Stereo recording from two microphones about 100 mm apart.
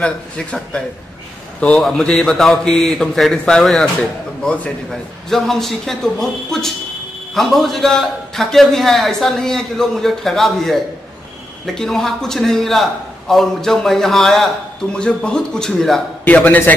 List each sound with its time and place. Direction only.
0.0 s a man's voice: 10° left (ahead or behind)
16.3 s a man's voice: 15° left (ahead or behind)